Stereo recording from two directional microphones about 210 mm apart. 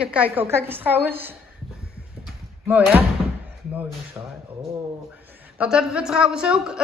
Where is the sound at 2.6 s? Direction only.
10° right (ahead or behind).